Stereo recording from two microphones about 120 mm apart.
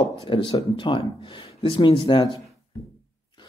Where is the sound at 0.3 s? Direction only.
45° left (ahead or behind).